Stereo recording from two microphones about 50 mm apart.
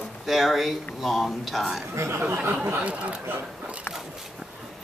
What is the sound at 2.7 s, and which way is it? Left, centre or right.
Speech, right.